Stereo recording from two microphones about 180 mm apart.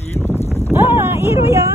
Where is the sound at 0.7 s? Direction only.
15° right (ahead or behind).